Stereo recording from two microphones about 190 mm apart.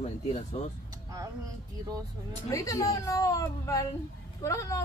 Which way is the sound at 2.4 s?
15° left (ahead or behind).